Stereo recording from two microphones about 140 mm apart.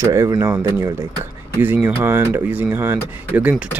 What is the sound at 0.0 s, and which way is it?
Speech, 20° right (ahead or behind).